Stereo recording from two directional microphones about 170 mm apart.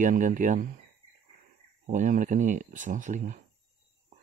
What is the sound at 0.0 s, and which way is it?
Speech, 50° right (ahead or behind).